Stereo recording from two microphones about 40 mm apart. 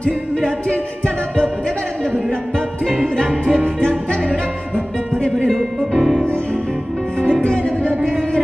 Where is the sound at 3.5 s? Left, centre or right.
Left.